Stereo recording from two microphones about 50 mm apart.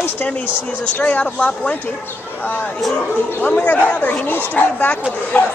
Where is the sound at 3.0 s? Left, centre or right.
Left.